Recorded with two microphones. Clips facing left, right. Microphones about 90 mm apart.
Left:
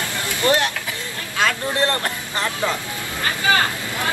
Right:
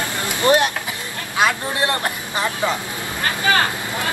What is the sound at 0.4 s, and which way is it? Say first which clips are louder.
Speech: right 3 dB; 20° right (ahead or behind).